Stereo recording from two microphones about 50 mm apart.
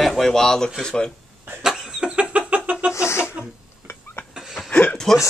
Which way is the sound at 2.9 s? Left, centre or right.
Left.